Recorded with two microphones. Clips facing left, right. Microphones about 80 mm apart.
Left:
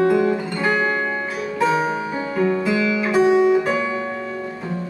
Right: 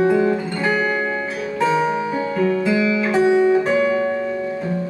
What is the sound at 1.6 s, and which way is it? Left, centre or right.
Music, left.